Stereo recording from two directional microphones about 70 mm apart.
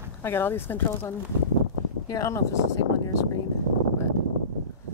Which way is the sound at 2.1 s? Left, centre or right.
Left.